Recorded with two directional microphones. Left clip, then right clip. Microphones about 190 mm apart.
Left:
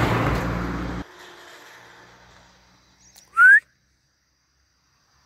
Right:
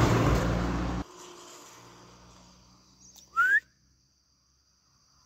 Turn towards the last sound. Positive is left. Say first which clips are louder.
# left 11 dB
turn(degrees=0)  # may be behind; listen again after turning